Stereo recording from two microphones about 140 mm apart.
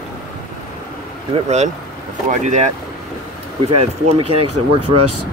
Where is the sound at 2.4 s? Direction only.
60° right (ahead or behind).